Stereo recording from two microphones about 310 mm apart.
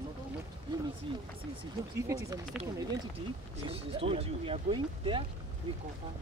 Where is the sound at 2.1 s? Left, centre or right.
Centre.